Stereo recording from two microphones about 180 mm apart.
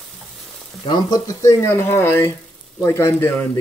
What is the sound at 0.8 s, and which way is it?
Speech, 25° left (ahead or behind).